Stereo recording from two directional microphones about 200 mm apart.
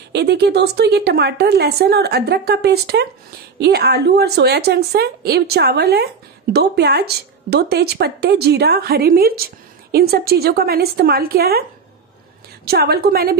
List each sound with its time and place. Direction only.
0.1 s speech: 55° right (ahead or behind)
12.6 s speech: 50° right (ahead or behind)